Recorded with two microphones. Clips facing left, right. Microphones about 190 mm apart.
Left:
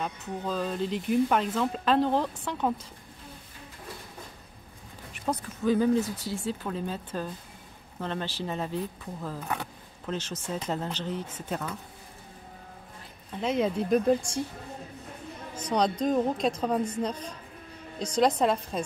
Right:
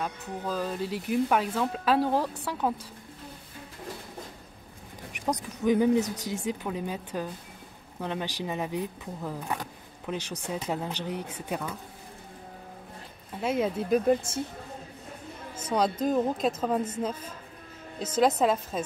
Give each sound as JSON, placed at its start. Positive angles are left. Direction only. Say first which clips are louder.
{"t": 0.0, "sound": "speech", "louder": "even", "side_deg": -10}
{"t": 5.1, "sound": "speech", "louder": "right 1 dB", "side_deg": -15}
{"t": 13.3, "sound": "a woman's voice", "louder": "left 1 dB", "side_deg": -5}
{"t": 15.7, "sound": "a woman's voice", "louder": "even", "side_deg": -5}